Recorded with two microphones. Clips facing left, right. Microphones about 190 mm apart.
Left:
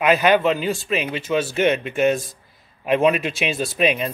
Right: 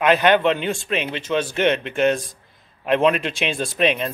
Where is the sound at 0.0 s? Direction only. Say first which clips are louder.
Even; 5° left (ahead or behind).